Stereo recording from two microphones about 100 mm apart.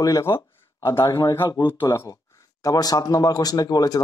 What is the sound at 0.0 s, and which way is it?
Speech, 35° left (ahead or behind).